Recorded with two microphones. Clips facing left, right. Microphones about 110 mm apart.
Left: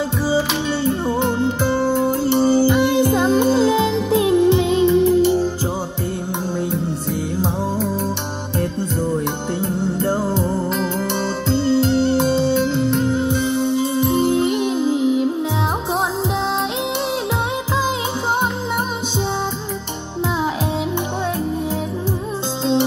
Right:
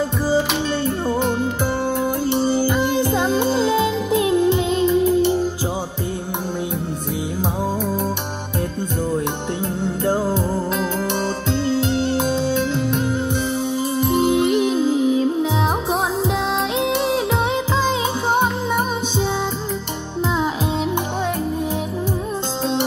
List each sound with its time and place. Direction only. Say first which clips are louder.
1.2 s music: left 2 dB; 20° left (ahead or behind)
10.0 s music: right 2 dB; 10° right (ahead or behind)
12.2 s music: left 3 dB; 10° right (ahead or behind)
13.3 s music: left 3 dB; 20° left (ahead or behind)
14.2 s music: right 2 dB; 20° right (ahead or behind)
14.5 s music: right 2 dB; 25° left (ahead or behind)